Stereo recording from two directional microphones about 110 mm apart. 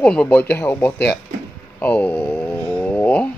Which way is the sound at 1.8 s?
15° left (ahead or behind).